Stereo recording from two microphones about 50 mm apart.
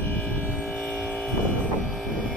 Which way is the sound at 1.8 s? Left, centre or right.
Centre.